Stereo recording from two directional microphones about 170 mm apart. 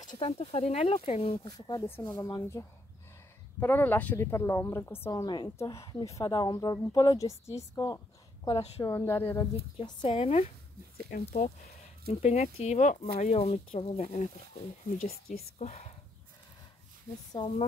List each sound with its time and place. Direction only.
0.0 s a sound: 50° left (ahead or behind)
0.4 s speech: 35° left (ahead or behind); by 5.1 s 15° left (ahead or behind)
5.1 s speech: 25° left (ahead or behind)
8.5 s speech: 35° left (ahead or behind)
8.8 s speech: 25° left (ahead or behind)
11.1 s speech: 45° left (ahead or behind)
15.6 s speech: 40° left (ahead or behind)
17.3 s speech: 25° left (ahead or behind)